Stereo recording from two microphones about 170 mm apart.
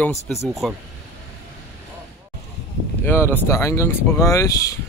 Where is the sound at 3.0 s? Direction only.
15° left (ahead or behind).